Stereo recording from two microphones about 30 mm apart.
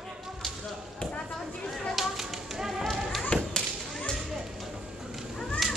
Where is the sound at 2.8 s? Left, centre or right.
Centre.